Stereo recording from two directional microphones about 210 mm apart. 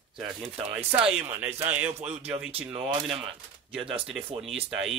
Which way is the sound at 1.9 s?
30° right (ahead or behind).